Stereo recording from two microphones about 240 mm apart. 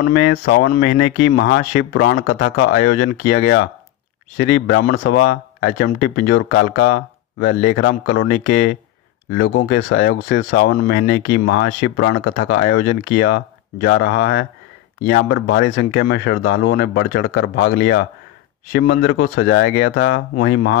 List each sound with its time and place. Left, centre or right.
0.1 s speech: left